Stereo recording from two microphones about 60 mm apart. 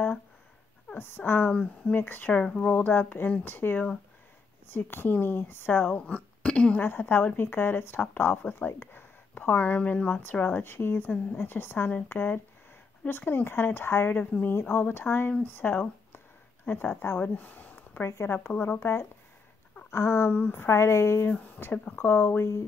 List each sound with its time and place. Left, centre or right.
0.9 s speech: left
1.5 s speech: centre
2.0 s speech: left
2.3 s speech: centre; by 5.9 s left
5.9 s speech: left
6.8 s speech: left
14.1 s speech: left
14.5 s speech: left
18.0 s a woman's voice: left